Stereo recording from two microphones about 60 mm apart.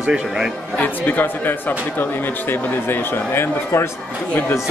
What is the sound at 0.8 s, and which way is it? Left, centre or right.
Speech, left.